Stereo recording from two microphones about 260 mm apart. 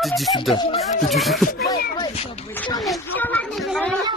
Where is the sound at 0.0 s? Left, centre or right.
Centre.